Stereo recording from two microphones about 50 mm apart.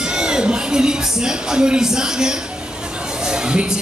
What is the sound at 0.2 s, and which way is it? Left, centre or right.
Speech, centre.